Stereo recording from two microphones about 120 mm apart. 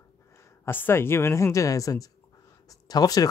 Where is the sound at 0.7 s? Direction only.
20° left (ahead or behind).